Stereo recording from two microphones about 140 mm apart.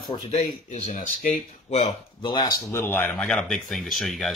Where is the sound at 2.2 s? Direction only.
30° left (ahead or behind).